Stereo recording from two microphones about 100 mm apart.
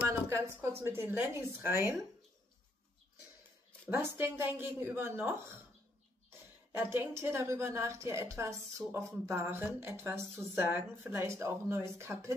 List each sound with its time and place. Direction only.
0.3 s a woman's voice: 25° right (ahead or behind)
3.9 s a woman's voice: 25° right (ahead or behind)
6.7 s a woman's voice: 20° right (ahead or behind)